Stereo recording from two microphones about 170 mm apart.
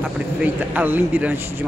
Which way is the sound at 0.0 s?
10° right (ahead or behind).